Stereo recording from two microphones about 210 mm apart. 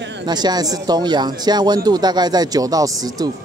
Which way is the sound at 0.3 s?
20° right (ahead or behind).